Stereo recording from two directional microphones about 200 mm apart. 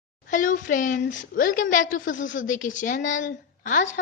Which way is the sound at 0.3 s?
40° left (ahead or behind).